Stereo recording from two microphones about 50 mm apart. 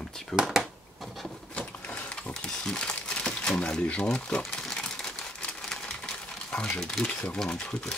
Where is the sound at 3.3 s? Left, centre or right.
Centre.